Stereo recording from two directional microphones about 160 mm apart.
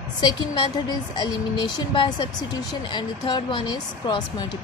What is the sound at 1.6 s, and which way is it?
Speech, 30° left (ahead or behind).